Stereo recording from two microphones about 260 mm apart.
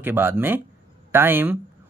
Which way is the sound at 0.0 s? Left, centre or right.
Centre.